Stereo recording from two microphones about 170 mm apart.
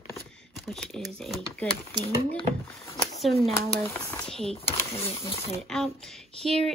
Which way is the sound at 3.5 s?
15° left (ahead or behind).